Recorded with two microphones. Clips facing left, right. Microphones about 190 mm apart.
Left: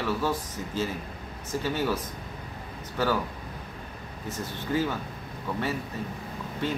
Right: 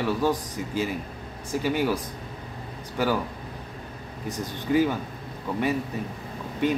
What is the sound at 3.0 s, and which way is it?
Speech, 15° right (ahead or behind).